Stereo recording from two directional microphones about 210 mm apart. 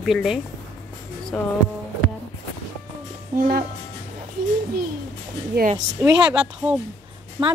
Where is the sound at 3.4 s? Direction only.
45° right (ahead or behind).